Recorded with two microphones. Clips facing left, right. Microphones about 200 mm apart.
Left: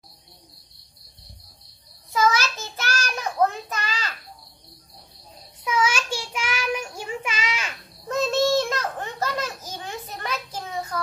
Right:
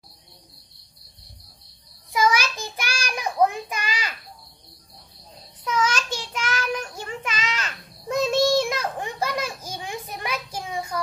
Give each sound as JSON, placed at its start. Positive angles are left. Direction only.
{"t": 2.1, "sound": "child singing", "side_deg": -15}
{"t": 5.6, "sound": "child singing", "side_deg": 10}
{"t": 8.1, "sound": "a sound", "side_deg": -10}